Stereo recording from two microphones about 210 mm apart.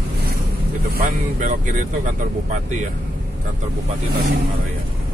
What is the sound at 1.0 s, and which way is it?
Speech, 40° right (ahead or behind).